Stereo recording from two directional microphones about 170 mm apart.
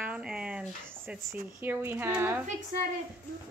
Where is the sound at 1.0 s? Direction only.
10° right (ahead or behind).